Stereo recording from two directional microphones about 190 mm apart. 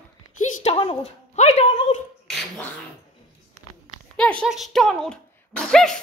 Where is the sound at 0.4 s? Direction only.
35° left (ahead or behind).